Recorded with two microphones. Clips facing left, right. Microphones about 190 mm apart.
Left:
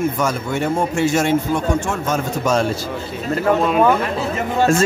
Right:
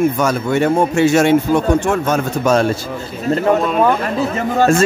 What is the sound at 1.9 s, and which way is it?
Speech, 60° right (ahead or behind).